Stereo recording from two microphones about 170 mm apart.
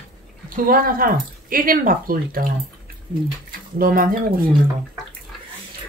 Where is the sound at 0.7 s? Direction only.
60° right (ahead or behind).